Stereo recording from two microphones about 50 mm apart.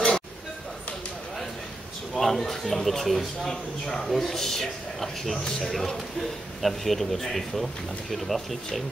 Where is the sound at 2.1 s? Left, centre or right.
Centre.